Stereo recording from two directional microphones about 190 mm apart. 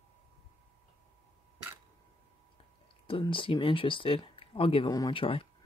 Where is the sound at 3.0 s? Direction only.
30° left (ahead or behind).